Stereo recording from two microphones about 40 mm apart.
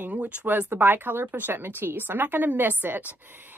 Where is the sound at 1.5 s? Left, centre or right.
Right.